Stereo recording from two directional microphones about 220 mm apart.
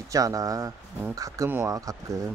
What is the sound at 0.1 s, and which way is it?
Speech, 15° right (ahead or behind).